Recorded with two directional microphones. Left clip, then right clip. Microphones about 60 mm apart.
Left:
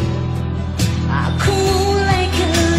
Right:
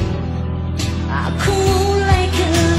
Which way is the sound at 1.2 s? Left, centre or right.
Right.